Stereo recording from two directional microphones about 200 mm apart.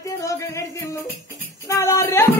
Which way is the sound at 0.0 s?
15° left (ahead or behind).